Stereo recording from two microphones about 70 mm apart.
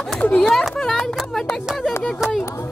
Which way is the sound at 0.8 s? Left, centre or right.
Centre.